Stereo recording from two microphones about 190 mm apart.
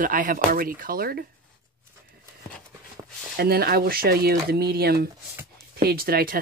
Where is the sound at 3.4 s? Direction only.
55° right (ahead or behind).